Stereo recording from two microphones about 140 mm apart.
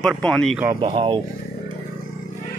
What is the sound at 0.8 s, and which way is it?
Speech, 40° right (ahead or behind).